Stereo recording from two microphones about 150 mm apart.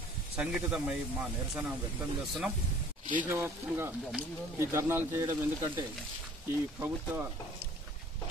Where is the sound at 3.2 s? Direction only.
15° right (ahead or behind).